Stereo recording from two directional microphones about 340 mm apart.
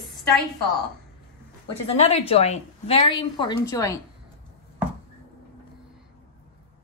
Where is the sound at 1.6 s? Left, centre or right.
Centre.